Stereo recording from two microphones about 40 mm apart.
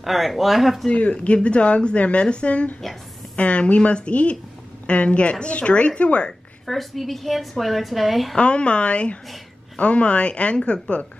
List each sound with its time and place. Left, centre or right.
0.0 s a woman's voice: centre
0.8 s a woman's voice: left
6.6 s a woman's voice: centre
8.4 s a woman's voice: left